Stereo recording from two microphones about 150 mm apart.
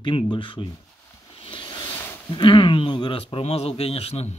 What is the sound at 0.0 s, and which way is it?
Speech, 35° left (ahead or behind).